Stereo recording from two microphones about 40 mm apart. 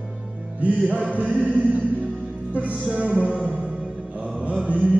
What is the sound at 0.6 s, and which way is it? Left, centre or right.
Music, right.